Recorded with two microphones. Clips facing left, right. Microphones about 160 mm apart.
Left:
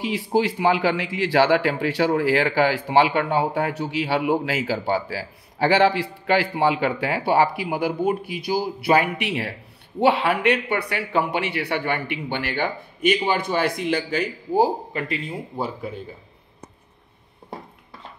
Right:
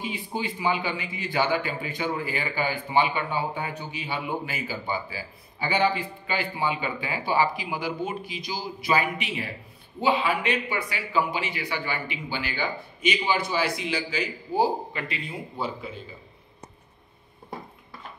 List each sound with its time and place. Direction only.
0.0 s a man's voice: 80° left; by 15.9 s 45° left (ahead or behind)